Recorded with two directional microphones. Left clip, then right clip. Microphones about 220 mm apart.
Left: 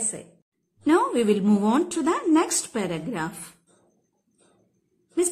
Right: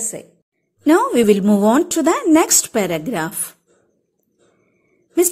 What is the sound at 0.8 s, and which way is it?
A woman's voice, 30° right (ahead or behind).